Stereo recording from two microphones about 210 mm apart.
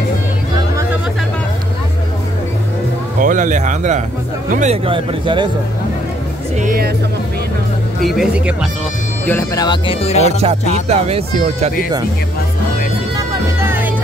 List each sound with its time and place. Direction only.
0.6 s vehicle: 15° right (ahead or behind)
3.2 s a man's voice: 40° right (ahead or behind); by 5.5 s 25° right (ahead or behind)
6.6 s music: 40° right (ahead or behind)
8.0 s speech: centre (ahead or behind)
9.2 s speech: 10° left (ahead or behind); by 10.3 s 30° left (ahead or behind)
10.7 s speech: 30° right (ahead or behind)
13.6 s music: 10° right (ahead or behind)